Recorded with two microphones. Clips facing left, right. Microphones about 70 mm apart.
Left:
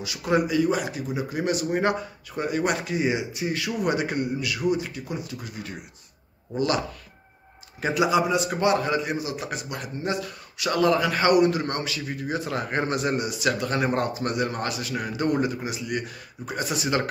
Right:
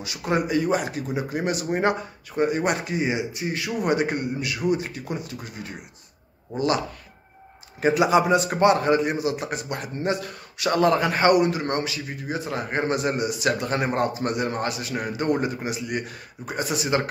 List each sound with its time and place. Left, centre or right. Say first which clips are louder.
0.0 s a man's voice: left 1 dB; right
7.8 s a man's voice: right 3 dB; right